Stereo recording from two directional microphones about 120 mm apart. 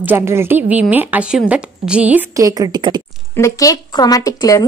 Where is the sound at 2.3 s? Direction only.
30° right (ahead or behind).